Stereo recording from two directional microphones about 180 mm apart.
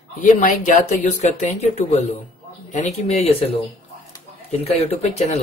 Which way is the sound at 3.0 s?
35° left (ahead or behind).